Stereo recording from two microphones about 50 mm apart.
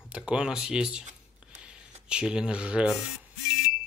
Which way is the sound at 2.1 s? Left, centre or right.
Centre.